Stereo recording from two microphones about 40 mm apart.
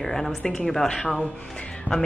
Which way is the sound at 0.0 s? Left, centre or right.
Centre.